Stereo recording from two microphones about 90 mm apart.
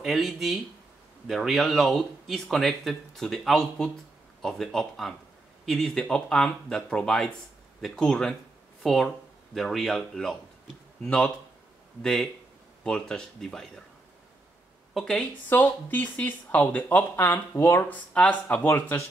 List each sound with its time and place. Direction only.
0.0 s speech: centre (ahead or behind)
15.0 s speech: centre (ahead or behind)
15.5 s speech: 20° left (ahead or behind)
17.8 s speech: 15° left (ahead or behind)
18.7 s speech: 30° left (ahead or behind)